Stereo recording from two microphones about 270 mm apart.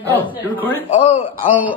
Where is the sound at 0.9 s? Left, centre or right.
Centre.